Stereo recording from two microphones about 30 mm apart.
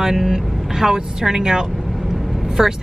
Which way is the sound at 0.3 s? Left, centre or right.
Centre.